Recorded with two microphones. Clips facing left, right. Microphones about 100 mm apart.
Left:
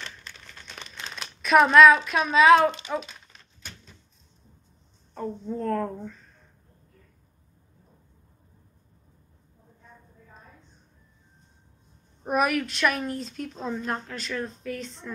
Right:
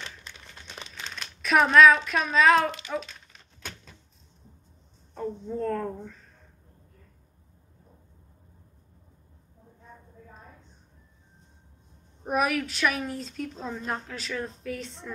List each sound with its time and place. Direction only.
0.0 s crumpling: 15° right (ahead or behind)
1.4 s a woman's voice: centre (ahead or behind)
5.1 s a woman's voice: centre (ahead or behind)
12.3 s a woman's voice: centre (ahead or behind)